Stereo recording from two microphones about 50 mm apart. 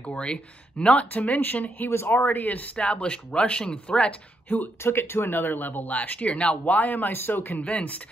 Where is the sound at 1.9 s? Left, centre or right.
Left.